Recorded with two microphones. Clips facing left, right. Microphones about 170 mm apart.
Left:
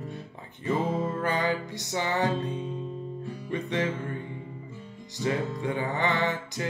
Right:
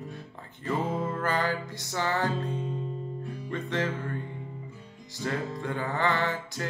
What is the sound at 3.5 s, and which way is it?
Music, 20° left (ahead or behind).